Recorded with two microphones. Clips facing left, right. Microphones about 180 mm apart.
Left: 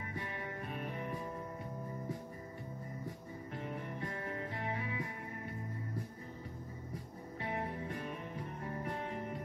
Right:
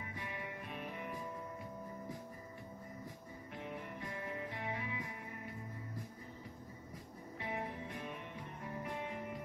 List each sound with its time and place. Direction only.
0.7 s music: 40° left (ahead or behind)
4.6 s music: 35° left (ahead or behind)